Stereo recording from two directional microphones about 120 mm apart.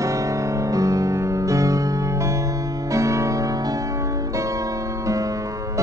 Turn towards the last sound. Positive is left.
turn(degrees=-25)  # may be behind; listen again after turning